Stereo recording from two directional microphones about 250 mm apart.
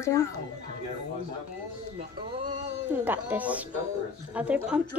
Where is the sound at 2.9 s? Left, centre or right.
Centre.